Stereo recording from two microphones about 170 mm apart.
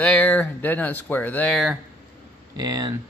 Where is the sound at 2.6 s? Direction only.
20° right (ahead or behind).